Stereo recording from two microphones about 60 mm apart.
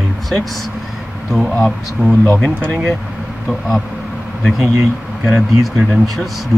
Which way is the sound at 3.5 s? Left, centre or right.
Centre.